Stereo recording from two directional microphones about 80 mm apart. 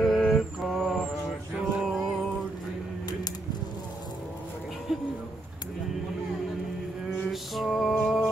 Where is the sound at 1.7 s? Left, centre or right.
Centre.